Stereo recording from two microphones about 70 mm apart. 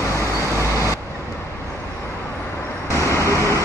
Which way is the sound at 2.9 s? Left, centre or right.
Left.